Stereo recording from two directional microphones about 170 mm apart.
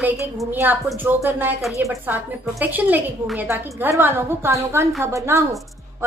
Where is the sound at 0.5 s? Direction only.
10° right (ahead or behind).